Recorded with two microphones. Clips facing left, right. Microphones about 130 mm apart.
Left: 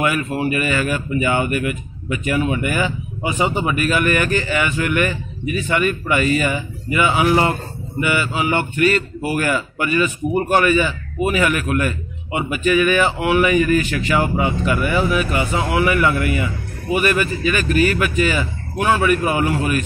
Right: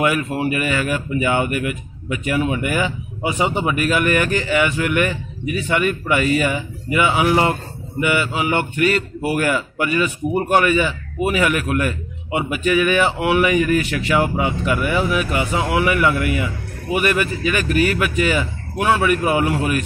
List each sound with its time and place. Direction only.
0.0 s speech: 15° right (ahead or behind)